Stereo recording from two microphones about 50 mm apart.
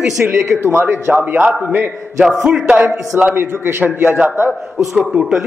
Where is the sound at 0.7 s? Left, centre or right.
Right.